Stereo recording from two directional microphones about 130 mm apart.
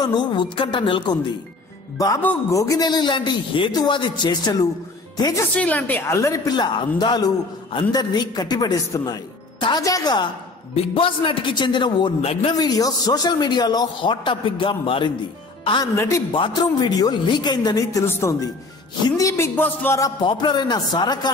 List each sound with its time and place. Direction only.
0.0 s a man's voice: 35° left (ahead or behind)
2.5 s a man's voice: 25° left (ahead or behind)
5.5 s a woman's voice: 10° left (ahead or behind); by 10.2 s 30° left (ahead or behind)
10.7 s a man's voice: 45° left (ahead or behind)
12.2 s a man's voice: 50° left (ahead or behind)
12.5 s a man's voice: 30° left (ahead or behind)
15.8 s a woman's voice: 20° left (ahead or behind)
16.3 s a man's voice: 40° left (ahead or behind); by 20.0 s 15° left (ahead or behind)
20.0 s a man's voice: 35° left (ahead or behind)